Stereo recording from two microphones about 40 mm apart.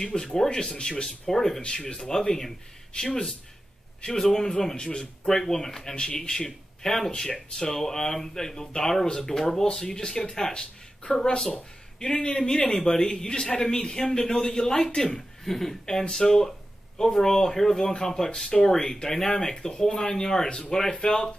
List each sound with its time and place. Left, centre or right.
0.0 s speech: centre
4.7 s speech: left; by 15.7 s centre
15.8 s speech: centre